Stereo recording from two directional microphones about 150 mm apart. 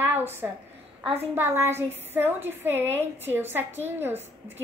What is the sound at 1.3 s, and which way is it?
A child's voice, 15° right (ahead or behind).